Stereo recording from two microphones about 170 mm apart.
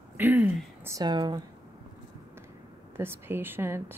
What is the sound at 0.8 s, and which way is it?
Speech, 20° right (ahead or behind).